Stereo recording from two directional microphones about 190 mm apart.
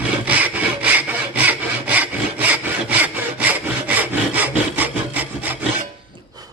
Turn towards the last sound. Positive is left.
turn(degrees=-10)  # may be behind; listen again after turning